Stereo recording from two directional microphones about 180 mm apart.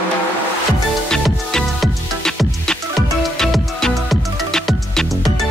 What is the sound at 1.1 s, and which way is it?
Music, 5° left (ahead or behind).